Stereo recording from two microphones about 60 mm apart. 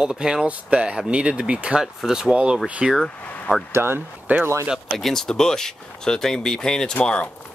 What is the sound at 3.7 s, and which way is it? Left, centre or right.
Speech, right.